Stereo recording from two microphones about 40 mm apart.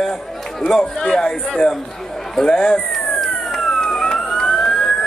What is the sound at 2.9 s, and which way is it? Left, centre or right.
Emergency vehicle, centre.